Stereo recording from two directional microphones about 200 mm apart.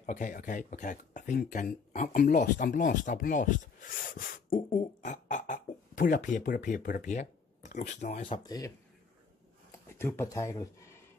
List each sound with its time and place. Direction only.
0.0 s speech: 40° left (ahead or behind)
8.5 s speech: 20° left (ahead or behind)
9.7 s a sound: 10° left (ahead or behind)